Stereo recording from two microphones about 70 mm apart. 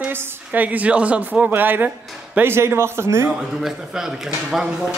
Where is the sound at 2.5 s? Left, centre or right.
Right.